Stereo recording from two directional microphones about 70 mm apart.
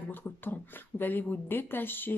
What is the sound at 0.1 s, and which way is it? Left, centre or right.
Speech, left.